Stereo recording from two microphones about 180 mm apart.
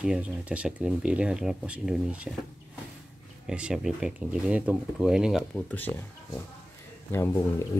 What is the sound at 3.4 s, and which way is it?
Speech, 5° right (ahead or behind).